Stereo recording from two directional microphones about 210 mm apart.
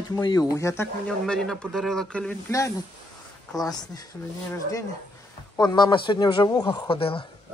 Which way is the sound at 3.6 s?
20° left (ahead or behind).